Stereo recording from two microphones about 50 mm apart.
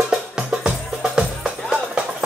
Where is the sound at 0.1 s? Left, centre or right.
Centre.